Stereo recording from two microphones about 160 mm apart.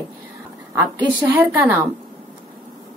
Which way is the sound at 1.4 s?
15° right (ahead or behind).